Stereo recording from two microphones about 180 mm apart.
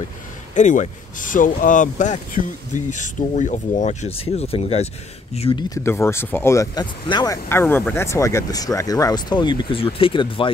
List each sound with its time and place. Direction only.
0.6 s speech: 45° left (ahead or behind)
5.9 s speech: 15° left (ahead or behind)
7.4 s speech: 10° left (ahead or behind); by 10.5 s 30° left (ahead or behind)